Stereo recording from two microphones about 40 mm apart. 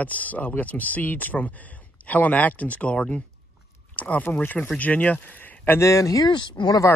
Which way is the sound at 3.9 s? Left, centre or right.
Left.